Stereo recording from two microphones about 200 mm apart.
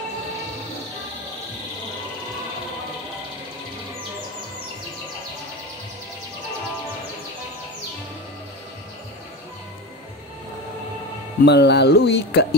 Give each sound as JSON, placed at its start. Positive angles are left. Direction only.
{"t": 11.4, "sound": "speech", "side_deg": 55}